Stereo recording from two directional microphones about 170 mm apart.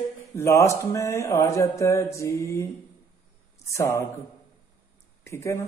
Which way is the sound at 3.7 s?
15° left (ahead or behind).